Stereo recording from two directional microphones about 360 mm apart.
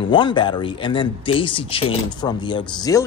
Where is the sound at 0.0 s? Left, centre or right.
Centre.